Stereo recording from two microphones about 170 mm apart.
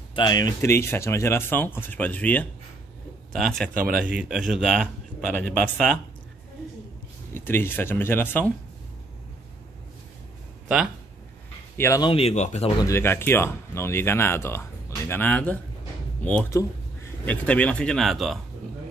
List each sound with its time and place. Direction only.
0.1 s speech: 25° left (ahead or behind); by 5.9 s 5° left (ahead or behind)
7.3 s speech: 10° left (ahead or behind)
11.7 s speech: 15° left (ahead or behind)
12.0 s speech: 35° left (ahead or behind)
12.8 s speech: 15° left (ahead or behind)